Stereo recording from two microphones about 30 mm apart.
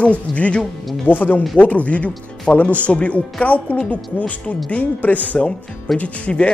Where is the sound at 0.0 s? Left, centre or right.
Left.